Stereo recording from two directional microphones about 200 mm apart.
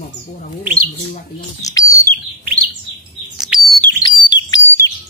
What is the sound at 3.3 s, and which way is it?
Bird, 5° right (ahead or behind).